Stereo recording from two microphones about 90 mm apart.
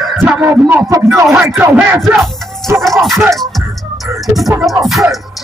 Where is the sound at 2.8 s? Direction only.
Centre (ahead or behind).